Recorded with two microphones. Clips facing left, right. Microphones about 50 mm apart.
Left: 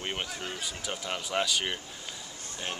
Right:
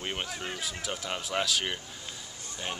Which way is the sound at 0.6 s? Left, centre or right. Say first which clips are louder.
Right 1 dB; centre.